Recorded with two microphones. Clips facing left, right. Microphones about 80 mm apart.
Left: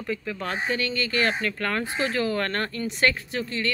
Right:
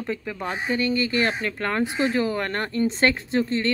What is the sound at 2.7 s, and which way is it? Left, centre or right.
Speech, right.